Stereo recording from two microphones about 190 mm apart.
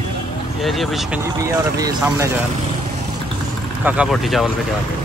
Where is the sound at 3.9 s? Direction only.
5° right (ahead or behind).